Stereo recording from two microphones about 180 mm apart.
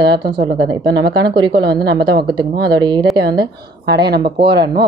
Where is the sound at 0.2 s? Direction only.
30° right (ahead or behind).